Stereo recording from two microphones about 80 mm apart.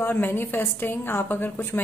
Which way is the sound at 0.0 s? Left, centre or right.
Left.